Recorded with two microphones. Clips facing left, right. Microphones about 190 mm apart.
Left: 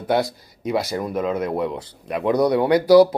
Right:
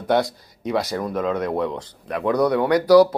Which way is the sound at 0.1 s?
5° left (ahead or behind).